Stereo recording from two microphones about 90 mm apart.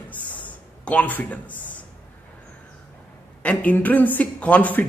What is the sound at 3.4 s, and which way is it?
Speech, 15° left (ahead or behind).